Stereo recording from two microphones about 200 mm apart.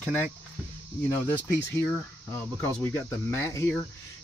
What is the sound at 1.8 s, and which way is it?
Speech, 10° left (ahead or behind).